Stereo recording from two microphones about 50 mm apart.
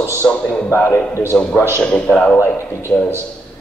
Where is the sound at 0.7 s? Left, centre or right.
Left.